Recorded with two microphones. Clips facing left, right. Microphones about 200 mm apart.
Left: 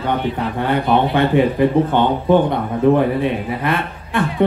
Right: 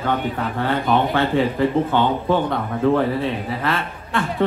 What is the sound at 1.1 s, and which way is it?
A man's voice, 15° left (ahead or behind).